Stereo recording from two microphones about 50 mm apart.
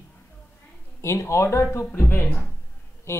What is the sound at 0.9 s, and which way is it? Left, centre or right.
Speech, left.